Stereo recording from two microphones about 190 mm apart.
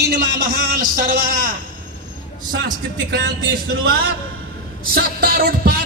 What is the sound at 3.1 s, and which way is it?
Speech, 55° right (ahead or behind).